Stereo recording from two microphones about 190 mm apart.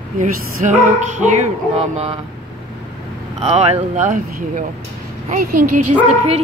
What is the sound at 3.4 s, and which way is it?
Speech, 35° right (ahead or behind).